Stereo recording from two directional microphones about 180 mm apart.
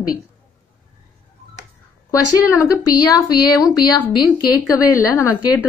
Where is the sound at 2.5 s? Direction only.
15° left (ahead or behind).